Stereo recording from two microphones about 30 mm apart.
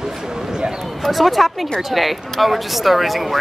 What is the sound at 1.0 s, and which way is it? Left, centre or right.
Speech, centre.